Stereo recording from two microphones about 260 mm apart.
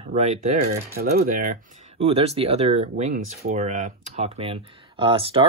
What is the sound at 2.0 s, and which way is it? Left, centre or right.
Speech, right.